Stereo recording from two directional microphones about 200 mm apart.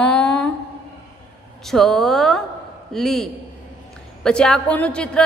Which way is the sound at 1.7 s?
Centre (ahead or behind).